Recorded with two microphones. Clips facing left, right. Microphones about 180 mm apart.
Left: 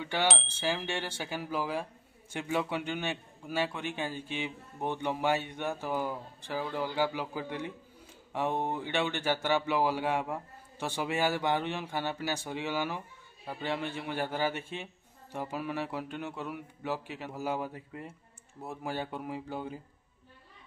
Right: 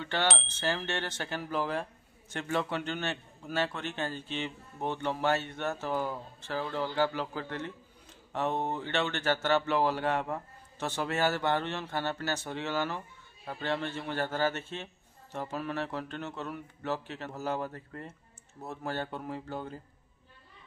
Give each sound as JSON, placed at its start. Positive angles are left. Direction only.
{"t": 0.0, "sound": "a man's voice", "side_deg": 10}